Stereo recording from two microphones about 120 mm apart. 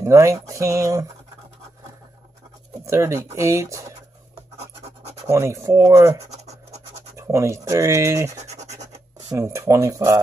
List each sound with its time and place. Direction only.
0.0 s speech: 25° right (ahead or behind)
2.8 s speech: 25° right (ahead or behind)
5.2 s speech: 25° right (ahead or behind)
7.2 s speech: 25° right (ahead or behind)
8.4 s scratch: 70° right (ahead or behind)
9.3 s speech: 25° right (ahead or behind)